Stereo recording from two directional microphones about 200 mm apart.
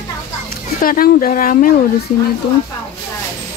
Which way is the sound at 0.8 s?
45° left (ahead or behind).